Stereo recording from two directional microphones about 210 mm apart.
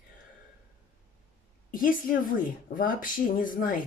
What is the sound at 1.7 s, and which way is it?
Speech, 40° left (ahead or behind).